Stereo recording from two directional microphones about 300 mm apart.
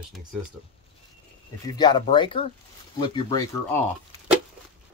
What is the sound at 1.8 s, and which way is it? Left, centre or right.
Speech, centre.